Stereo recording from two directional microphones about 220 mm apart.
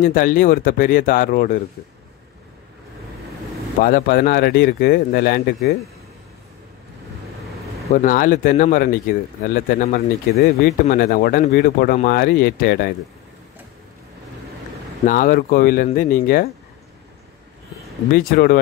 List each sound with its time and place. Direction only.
0.0 s speech: 40° left (ahead or behind)
3.8 s speech: 40° left (ahead or behind)
7.9 s speech: 35° left (ahead or behind)
15.0 s speech: 35° left (ahead or behind)
18.3 s speech: 45° left (ahead or behind)